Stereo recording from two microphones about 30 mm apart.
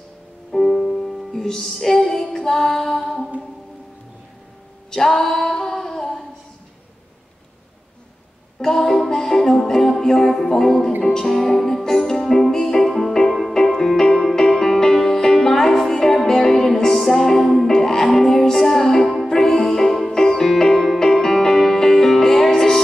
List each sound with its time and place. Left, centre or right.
0.5 s music: centre
4.9 s a capella: centre
8.5 s a sound: centre
9.1 s music: centre
16.7 s music: centre
17.6 s music: centre